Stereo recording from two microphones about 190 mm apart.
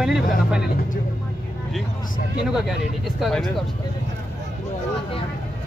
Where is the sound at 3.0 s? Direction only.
Centre (ahead or behind).